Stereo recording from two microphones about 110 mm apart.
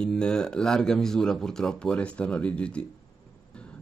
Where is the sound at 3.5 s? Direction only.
10° left (ahead or behind).